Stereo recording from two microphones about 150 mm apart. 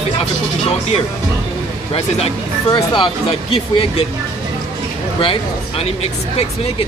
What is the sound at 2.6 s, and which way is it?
Speech, 30° left (ahead or behind).